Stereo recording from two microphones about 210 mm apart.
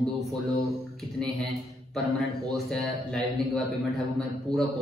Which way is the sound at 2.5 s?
Centre (ahead or behind).